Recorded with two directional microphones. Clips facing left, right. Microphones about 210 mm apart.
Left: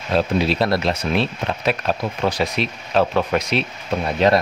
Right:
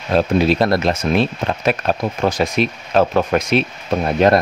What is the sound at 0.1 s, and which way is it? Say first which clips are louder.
Speech: right 4 dB; 45° right (ahead or behind).